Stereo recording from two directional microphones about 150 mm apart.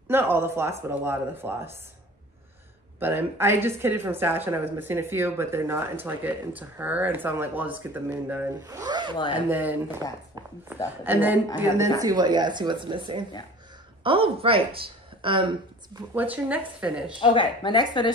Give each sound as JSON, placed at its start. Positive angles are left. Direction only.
{"t": 0.1, "sound": "a woman's voice", "side_deg": -15}
{"t": 3.0, "sound": "a woman's voice", "side_deg": -15}
{"t": 8.6, "sound": "speech", "side_deg": -25}
{"t": 9.5, "sound": "a woman's voice", "side_deg": -10}
{"t": 10.4, "sound": "a sound", "side_deg": -25}
{"t": 11.1, "sound": "a woman's voice", "side_deg": -10}
{"t": 12.0, "sound": "speech", "side_deg": -25}
{"t": 16.2, "sound": "a woman's voice", "side_deg": -10}
{"t": 17.2, "sound": "speech", "side_deg": 35}